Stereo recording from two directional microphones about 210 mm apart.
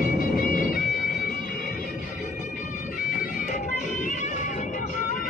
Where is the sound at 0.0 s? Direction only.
40° left (ahead or behind).